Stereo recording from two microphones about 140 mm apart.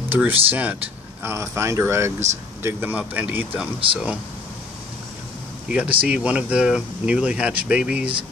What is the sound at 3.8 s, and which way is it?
Speech, 40° right (ahead or behind).